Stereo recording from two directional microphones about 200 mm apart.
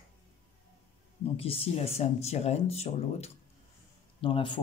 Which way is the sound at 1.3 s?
30° left (ahead or behind).